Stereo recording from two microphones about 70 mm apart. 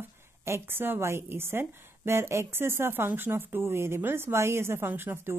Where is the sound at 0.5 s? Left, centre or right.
Right.